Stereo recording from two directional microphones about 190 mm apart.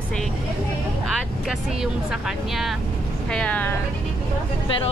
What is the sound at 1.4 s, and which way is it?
Speech, centre (ahead or behind).